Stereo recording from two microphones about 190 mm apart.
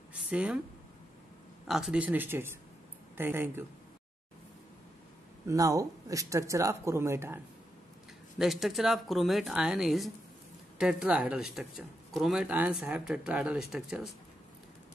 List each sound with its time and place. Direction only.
0.1 s a sound: 5° right (ahead or behind)
1.7 s speech: 5° right (ahead or behind)
5.5 s speech: 15° right (ahead or behind)
8.4 s speech: centre (ahead or behind)